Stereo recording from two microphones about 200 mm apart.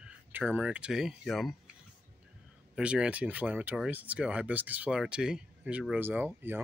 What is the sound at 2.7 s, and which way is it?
Speech, 5° right (ahead or behind).